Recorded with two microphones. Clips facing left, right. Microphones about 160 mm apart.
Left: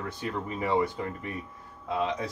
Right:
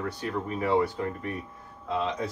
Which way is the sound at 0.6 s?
20° left (ahead or behind).